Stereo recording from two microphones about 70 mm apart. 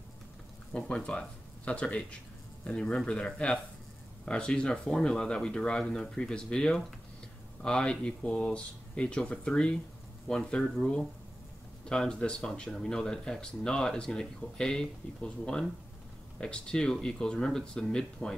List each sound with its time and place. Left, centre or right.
0.7 s speech: centre